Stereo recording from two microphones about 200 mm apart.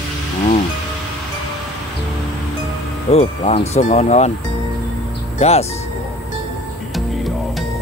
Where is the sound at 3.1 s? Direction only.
30° left (ahead or behind).